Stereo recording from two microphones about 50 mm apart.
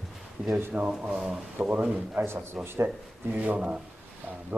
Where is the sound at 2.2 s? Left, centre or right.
Right.